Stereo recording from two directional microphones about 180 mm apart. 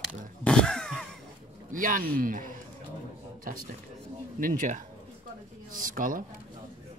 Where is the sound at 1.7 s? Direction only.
50° right (ahead or behind).